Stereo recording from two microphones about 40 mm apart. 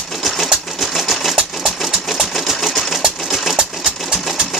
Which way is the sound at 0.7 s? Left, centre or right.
Centre.